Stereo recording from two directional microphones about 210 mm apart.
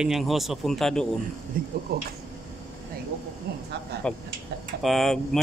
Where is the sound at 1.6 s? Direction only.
45° right (ahead or behind).